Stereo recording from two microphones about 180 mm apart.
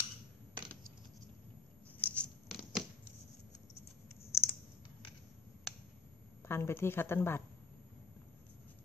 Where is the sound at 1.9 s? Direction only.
10° left (ahead or behind).